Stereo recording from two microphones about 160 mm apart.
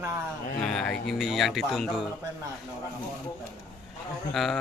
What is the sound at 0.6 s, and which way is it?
Speech, 5° left (ahead or behind).